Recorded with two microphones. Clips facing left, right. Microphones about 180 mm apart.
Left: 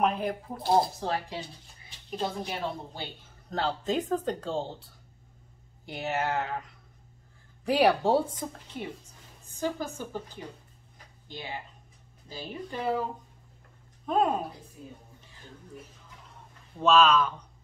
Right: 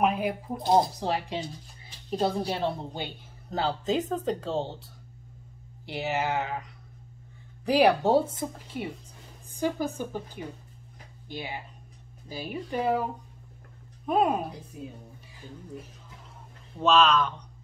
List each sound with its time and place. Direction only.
0.0 s speech: 5° right (ahead or behind)
0.6 s speech: 20° right (ahead or behind)
2.0 s a woman's voice: 35° right (ahead or behind)
3.4 s speech: centre (ahead or behind)
5.9 s speech: centre (ahead or behind)
7.6 s speech: centre (ahead or behind)
14.0 s speech: 10° right (ahead or behind)
16.8 s speech: centre (ahead or behind)